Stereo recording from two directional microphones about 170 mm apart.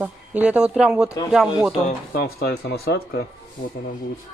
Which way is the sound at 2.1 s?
65° left (ahead or behind).